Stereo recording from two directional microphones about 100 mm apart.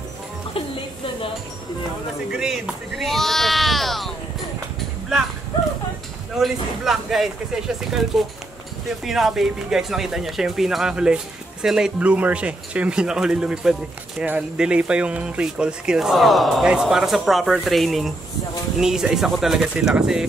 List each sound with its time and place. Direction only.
0.6 s music: 60° left (ahead or behind)
2.3 s a sound: 5° right (ahead or behind)
6.3 s speech: centre (ahead or behind)